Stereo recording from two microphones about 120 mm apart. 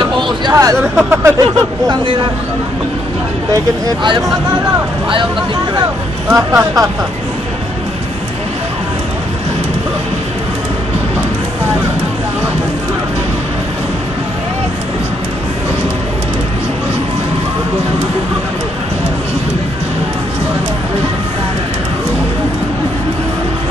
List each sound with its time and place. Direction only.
0.0 s a sound: 35° right (ahead or behind)
0.9 s speech: 20° right (ahead or behind)
4.0 s speech: 40° right (ahead or behind)
5.8 s speech: 25° right (ahead or behind)